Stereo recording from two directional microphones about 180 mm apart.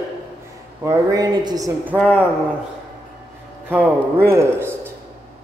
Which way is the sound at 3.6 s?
10° right (ahead or behind).